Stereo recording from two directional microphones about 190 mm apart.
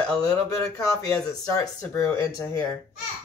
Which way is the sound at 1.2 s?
20° left (ahead or behind).